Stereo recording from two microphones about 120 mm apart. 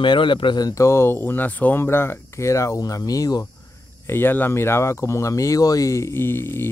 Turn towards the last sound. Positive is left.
turn(degrees=20)  # may be behind; listen again after turning